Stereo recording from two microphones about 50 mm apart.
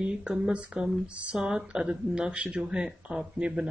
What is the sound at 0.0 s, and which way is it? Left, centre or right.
Speech, right.